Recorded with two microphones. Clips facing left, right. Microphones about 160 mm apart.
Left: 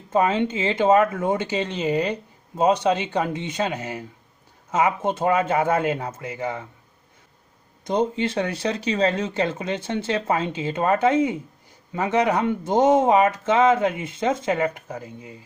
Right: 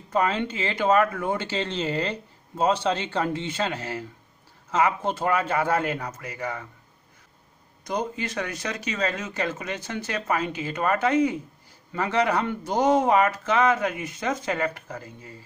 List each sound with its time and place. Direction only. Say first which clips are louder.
0.1 s speech: left 4 dB; 20° left (ahead or behind)
7.8 s speech: left 7 dB; 25° left (ahead or behind)